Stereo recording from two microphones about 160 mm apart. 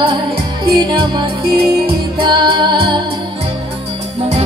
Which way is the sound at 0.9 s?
30° right (ahead or behind).